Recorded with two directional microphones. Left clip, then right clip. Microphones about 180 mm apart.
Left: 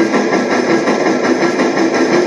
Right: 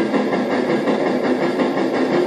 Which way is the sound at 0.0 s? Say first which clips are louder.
Left 6 dB; 40° left (ahead or behind).